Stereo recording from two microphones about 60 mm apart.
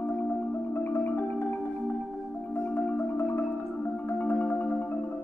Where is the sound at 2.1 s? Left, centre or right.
Centre.